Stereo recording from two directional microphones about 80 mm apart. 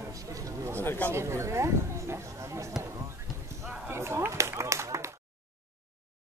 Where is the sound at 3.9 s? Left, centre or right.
Right.